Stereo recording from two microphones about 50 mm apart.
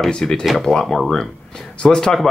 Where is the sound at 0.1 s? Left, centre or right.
Centre.